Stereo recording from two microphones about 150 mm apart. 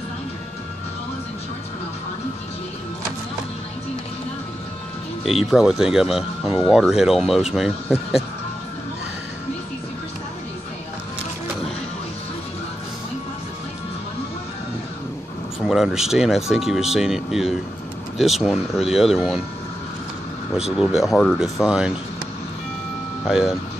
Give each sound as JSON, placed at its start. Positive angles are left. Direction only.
{"t": 5.2, "sound": "speech", "side_deg": 0}
{"t": 15.6, "sound": "speech", "side_deg": 0}
{"t": 20.5, "sound": "speech", "side_deg": -5}
{"t": 23.2, "sound": "speech", "side_deg": 0}